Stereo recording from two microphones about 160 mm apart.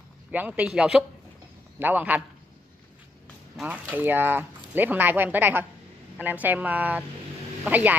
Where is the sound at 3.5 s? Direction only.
10° right (ahead or behind).